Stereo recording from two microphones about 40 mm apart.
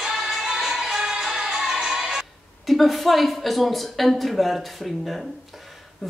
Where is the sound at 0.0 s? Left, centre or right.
Centre.